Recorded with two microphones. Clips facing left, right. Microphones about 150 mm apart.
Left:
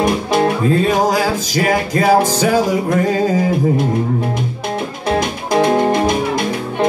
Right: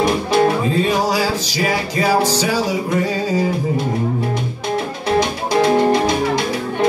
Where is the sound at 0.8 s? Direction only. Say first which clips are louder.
Left 3 dB; 50° left (ahead or behind).